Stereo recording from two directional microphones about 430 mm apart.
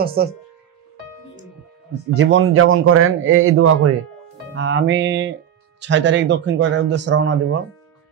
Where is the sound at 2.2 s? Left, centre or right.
Right.